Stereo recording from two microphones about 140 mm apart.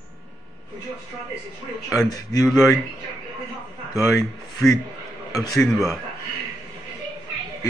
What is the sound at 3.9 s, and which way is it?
Speech, 25° left (ahead or behind).